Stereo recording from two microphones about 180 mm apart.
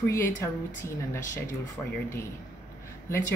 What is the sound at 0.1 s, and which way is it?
Speech, 15° left (ahead or behind).